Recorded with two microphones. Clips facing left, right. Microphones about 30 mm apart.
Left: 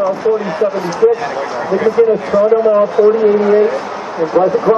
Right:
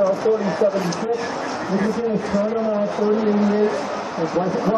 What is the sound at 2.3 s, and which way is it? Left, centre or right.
A man's voice, centre.